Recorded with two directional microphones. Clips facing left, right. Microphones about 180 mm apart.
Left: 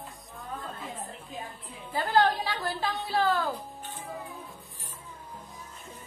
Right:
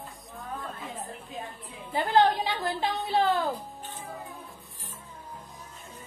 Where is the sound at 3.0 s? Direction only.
20° right (ahead or behind).